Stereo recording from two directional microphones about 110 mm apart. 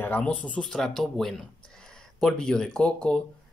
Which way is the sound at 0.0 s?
15° left (ahead or behind).